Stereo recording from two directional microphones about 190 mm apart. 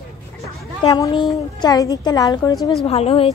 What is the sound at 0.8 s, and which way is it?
A woman's voice, 20° left (ahead or behind).